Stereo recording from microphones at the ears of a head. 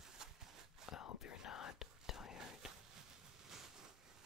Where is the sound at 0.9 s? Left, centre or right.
Left.